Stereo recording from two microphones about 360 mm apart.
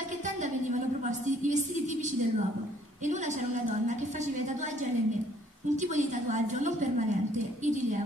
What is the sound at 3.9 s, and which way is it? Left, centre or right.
Speech, centre.